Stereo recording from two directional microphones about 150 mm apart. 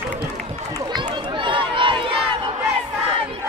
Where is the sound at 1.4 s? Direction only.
35° right (ahead or behind).